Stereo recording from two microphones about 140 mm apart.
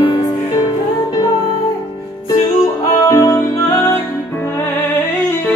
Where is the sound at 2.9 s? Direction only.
25° left (ahead or behind).